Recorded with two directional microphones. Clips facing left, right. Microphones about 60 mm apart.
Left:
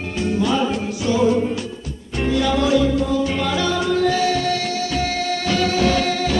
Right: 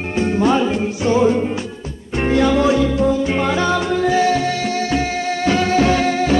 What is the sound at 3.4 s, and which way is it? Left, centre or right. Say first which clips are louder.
Music: right 3 dB; right.